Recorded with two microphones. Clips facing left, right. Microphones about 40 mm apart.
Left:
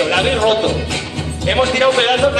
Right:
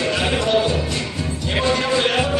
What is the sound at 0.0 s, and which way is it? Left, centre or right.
Music, left.